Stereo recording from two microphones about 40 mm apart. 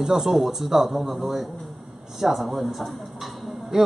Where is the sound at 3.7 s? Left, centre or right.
Centre.